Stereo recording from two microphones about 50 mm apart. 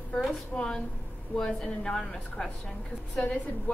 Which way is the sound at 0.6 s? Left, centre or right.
Centre.